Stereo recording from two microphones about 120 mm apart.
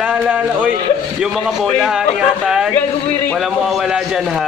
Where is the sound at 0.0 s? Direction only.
10° right (ahead or behind).